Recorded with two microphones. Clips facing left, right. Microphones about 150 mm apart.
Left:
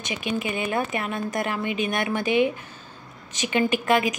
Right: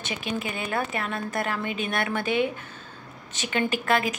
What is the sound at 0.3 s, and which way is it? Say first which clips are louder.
A woman's voice: left 4 dB; 10° left (ahead or behind).